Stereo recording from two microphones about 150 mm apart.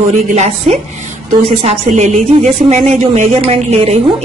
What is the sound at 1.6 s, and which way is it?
A woman's voice, 50° right (ahead or behind).